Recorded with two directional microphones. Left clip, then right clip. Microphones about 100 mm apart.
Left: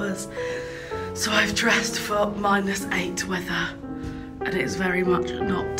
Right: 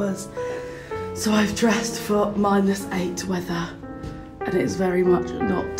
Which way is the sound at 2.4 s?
65° right (ahead or behind).